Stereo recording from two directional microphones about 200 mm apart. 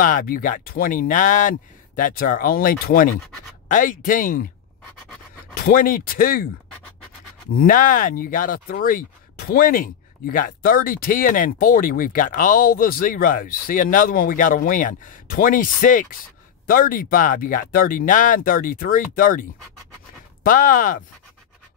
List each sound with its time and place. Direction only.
0.0 s speech: 45° left (ahead or behind)
5.6 s speech: 45° left (ahead or behind)
7.5 s speech: 45° left (ahead or behind)
20.4 s speech: 40° left (ahead or behind)